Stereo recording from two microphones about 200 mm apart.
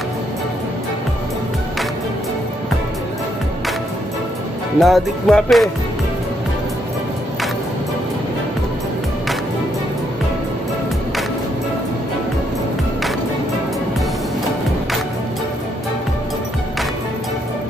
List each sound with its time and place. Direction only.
4.7 s music: centre (ahead or behind)